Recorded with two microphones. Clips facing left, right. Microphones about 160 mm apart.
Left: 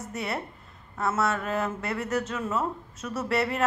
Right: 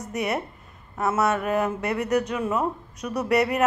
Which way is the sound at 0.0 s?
20° right (ahead or behind).